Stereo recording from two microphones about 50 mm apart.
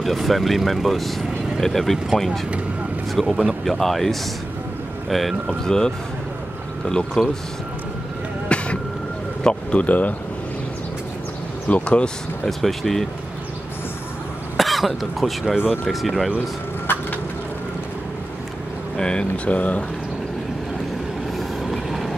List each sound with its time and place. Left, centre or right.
0.0 s speech: centre
5.5 s speech: centre
7.2 s speech: centre
8.5 s a sound: left
9.8 s a man's voice: left
11.7 s speech: left
12.4 s speech: centre
14.6 s speech: centre
15.4 s speech: centre
15.8 s speech: centre
18.9 s speech: centre
21.4 s vehicle: centre